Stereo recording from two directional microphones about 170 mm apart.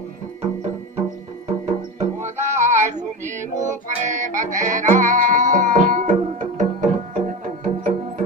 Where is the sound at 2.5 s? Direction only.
45° right (ahead or behind).